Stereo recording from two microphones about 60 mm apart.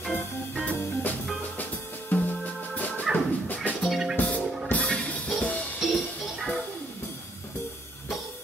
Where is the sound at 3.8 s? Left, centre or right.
Centre.